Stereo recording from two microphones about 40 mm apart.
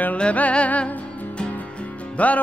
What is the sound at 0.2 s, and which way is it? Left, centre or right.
Music, left.